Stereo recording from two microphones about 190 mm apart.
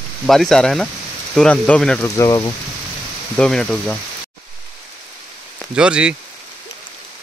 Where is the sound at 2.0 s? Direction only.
15° left (ahead or behind).